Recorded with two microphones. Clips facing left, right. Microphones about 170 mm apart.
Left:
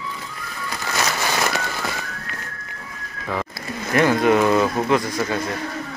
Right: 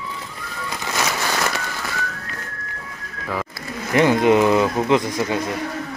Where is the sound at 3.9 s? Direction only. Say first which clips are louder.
Right 2 dB; 20° right (ahead or behind).